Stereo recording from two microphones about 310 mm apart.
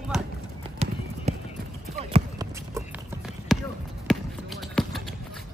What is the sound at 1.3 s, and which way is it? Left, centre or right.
Clip-clop, right.